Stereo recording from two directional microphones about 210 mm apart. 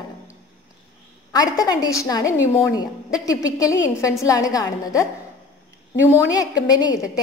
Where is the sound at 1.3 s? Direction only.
15° left (ahead or behind).